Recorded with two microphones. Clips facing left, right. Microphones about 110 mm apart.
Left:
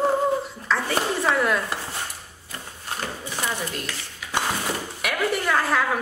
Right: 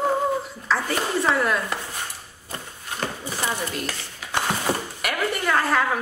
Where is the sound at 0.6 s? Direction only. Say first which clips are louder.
Right 1 dB; centre (ahead or behind).